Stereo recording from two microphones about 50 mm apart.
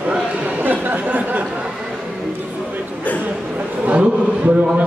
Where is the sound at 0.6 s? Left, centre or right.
Right.